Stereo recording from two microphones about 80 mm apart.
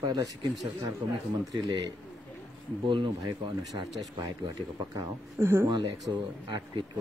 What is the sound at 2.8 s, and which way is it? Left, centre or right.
Speech, right.